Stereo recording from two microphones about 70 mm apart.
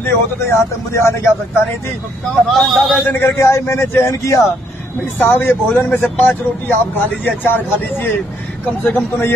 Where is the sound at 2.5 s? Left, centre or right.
Centre.